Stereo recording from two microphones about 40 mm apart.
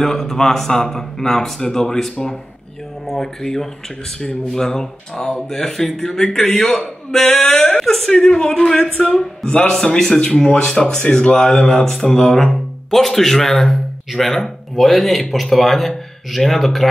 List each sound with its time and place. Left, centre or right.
0.0 s speech: centre
8.1 s speech: centre
9.5 s a man's voice: left
9.8 s speech: centre